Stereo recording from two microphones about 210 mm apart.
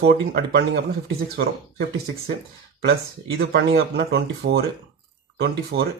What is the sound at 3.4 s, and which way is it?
Speech, 55° right (ahead or behind).